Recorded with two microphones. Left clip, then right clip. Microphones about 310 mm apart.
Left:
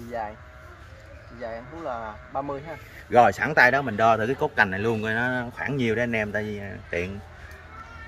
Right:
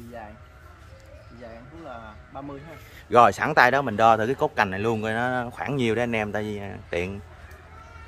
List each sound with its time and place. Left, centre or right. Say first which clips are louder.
1.4 s speech: left 8 dB; centre
3.1 s speech: right 1 dB; centre